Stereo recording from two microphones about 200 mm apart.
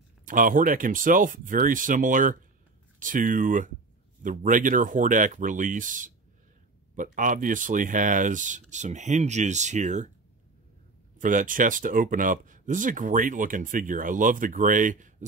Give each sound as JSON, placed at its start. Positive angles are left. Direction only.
{"t": 0.2, "sound": "speech", "side_deg": -40}
{"t": 11.1, "sound": "speech", "side_deg": -40}